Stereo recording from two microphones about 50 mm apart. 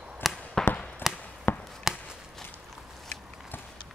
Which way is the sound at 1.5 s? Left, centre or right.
Left.